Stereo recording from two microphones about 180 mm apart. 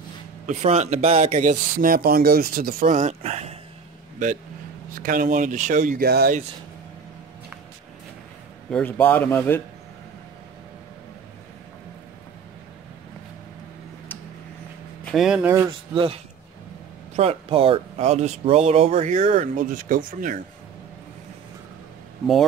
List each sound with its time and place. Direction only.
0.5 s speech: 40° right (ahead or behind)
4.9 s speech: 50° right (ahead or behind)
8.6 s a man's voice: 5° left (ahead or behind)
15.0 s speech: centre (ahead or behind)
15.9 s speech: 30° right (ahead or behind); by 20.4 s 50° right (ahead or behind)